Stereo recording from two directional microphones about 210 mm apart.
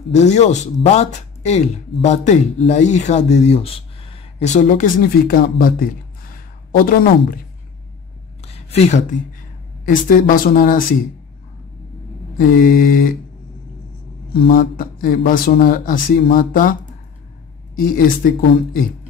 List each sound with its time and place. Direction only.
0.1 s speech: 35° left (ahead or behind)
8.4 s a sound: 30° left (ahead or behind)
9.8 s speech: 40° left (ahead or behind)
12.4 s speech: 45° left (ahead or behind)
14.3 s speech: 45° left (ahead or behind)
17.7 s speech: 45° left (ahead or behind)